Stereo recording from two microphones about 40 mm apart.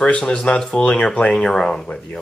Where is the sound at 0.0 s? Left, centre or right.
Left.